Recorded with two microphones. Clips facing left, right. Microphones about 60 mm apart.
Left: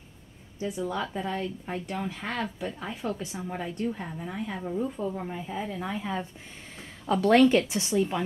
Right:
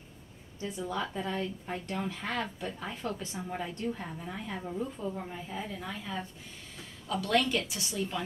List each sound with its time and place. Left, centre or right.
0.6 s a woman's voice: centre
6.8 s a woman's voice: left